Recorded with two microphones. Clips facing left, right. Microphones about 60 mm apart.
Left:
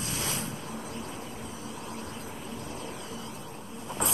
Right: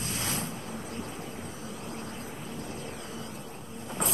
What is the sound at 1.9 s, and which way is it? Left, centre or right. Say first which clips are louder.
Vehicle: even; right.